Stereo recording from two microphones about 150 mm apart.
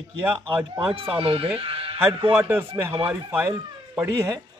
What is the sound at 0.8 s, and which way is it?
Speech, 35° right (ahead or behind).